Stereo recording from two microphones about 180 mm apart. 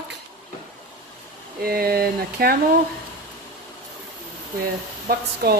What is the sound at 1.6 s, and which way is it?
Speech, 55° right (ahead or behind).